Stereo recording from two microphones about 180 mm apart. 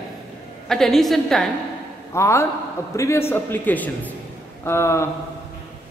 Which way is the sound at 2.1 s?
15° left (ahead or behind).